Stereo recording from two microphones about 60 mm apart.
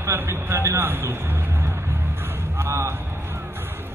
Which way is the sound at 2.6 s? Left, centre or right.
Right.